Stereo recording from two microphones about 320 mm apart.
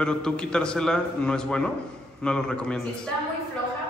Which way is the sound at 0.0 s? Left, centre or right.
Centre.